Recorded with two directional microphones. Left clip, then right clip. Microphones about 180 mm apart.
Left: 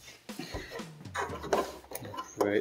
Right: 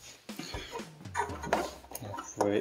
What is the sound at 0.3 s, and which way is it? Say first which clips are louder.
Music: left 1 dB; centre (ahead or behind).